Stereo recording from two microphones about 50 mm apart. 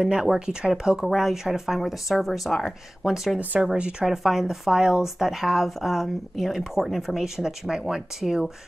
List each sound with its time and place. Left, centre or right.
0.0 s speech: centre
3.3 s speech: right
4.0 s speech: centre